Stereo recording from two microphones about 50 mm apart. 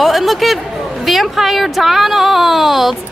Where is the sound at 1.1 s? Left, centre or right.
Centre.